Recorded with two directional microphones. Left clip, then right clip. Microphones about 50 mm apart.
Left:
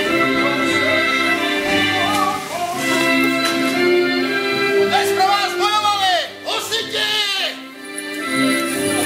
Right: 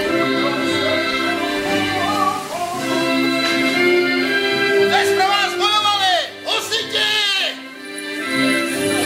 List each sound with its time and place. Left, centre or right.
0.0 s music: right
4.9 s music: centre